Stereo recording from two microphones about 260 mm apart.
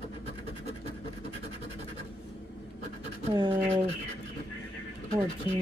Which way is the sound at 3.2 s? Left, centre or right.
Right.